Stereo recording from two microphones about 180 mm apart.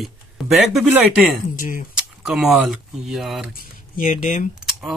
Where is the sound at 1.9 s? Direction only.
Centre (ahead or behind).